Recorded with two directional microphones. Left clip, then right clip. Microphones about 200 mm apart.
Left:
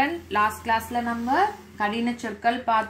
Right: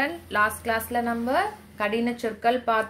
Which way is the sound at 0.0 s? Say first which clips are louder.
Left 1 dB; 45° right (ahead or behind).